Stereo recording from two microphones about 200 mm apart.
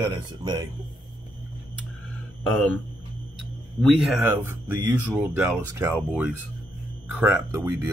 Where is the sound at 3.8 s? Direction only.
Centre (ahead or behind).